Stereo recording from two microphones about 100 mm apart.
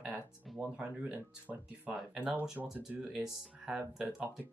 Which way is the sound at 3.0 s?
5° right (ahead or behind).